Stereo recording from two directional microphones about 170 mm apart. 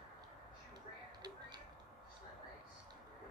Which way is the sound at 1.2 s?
25° right (ahead or behind).